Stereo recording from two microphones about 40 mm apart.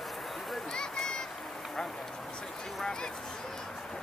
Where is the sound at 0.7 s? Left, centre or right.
Centre.